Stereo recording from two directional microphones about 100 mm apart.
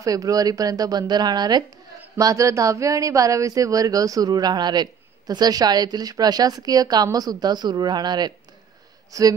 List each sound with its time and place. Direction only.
0.0 s speech: 35° right (ahead or behind)
2.1 s speech: 35° right (ahead or behind)